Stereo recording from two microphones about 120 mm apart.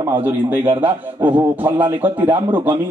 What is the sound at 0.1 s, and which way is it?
A man's voice, 15° right (ahead or behind).